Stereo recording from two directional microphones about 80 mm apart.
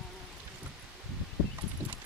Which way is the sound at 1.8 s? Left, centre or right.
Right.